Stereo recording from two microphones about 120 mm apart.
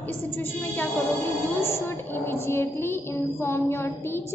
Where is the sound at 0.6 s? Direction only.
15° left (ahead or behind).